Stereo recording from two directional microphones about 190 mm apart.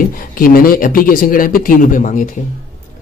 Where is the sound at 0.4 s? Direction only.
50° left (ahead or behind).